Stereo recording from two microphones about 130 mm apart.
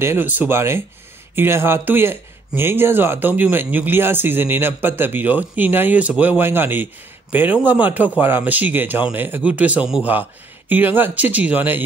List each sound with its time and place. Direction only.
0.0 s speech: 15° right (ahead or behind)